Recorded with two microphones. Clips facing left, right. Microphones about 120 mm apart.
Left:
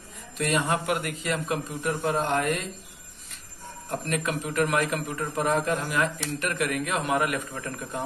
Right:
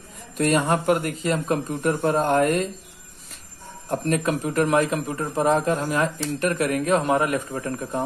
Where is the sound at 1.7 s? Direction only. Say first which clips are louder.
Right 6 dB; 50° right (ahead or behind).